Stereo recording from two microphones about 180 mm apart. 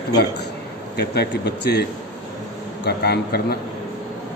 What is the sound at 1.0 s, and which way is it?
Speech, 65° left (ahead or behind).